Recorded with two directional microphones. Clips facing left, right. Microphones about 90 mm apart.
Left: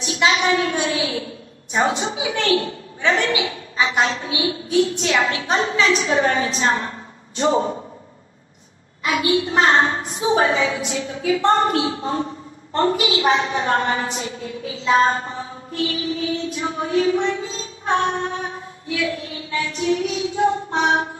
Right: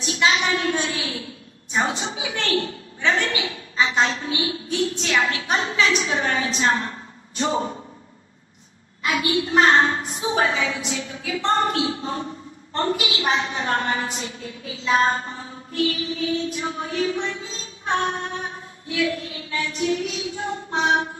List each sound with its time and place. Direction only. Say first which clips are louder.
0.0 s a woman's voice: left 2 dB; 25° left (ahead or behind)
7.3 s child singing: left 5 dB; 30° left (ahead or behind)
9.0 s a woman's voice: left 3 dB; 30° left (ahead or behind)
14.9 s child singing: left 3 dB; 30° left (ahead or behind)
16.5 s a woman's voice: left 5 dB; 35° left (ahead or behind)
18.9 s child singing: even; 30° left (ahead or behind)